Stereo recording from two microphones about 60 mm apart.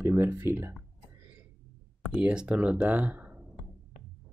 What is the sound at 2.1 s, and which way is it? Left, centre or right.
Speech, centre.